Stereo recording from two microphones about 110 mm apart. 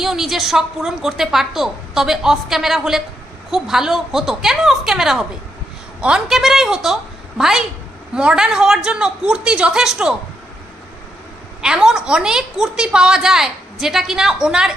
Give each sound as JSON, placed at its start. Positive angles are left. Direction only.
{"t": 0.0, "sound": "a woman's voice", "side_deg": -5}
{"t": 11.6, "sound": "a woman's voice", "side_deg": -5}